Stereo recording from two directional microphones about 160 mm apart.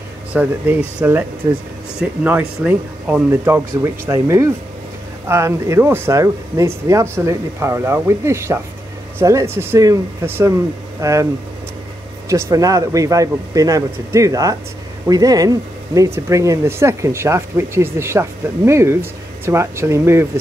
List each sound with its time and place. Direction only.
0.3 s speech: 10° right (ahead or behind)
12.3 s speech: 20° right (ahead or behind)